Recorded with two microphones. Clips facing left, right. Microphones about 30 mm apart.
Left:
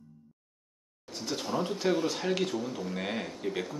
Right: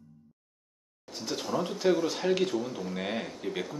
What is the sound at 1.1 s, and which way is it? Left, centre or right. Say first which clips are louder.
A man's voice: right 1 dB; centre.